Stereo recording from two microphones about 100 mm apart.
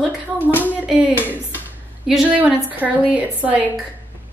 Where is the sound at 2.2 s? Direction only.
15° right (ahead or behind).